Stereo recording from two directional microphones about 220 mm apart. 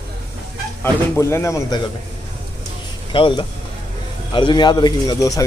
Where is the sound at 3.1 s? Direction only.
20° left (ahead or behind).